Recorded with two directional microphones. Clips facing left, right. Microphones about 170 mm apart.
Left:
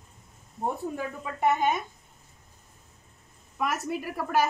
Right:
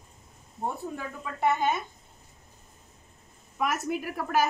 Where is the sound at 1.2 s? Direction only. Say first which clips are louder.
Left 1 dB; 15° left (ahead or behind).